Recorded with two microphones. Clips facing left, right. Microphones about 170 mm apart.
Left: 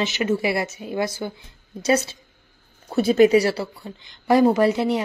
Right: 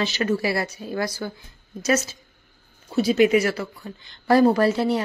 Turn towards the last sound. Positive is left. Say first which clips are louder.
# left 1 dB
turn(degrees=20)  # may be behind; listen again after turning